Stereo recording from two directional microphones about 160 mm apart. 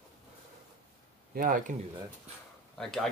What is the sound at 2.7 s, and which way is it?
Speech, centre (ahead or behind).